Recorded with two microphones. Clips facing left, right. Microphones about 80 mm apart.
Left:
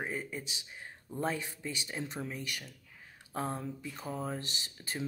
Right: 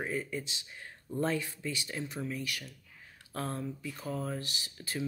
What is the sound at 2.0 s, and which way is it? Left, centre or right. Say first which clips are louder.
Speech: right 2 dB; left.